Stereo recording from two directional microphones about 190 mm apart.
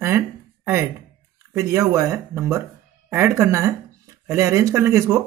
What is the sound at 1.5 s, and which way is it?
Speech, 15° right (ahead or behind).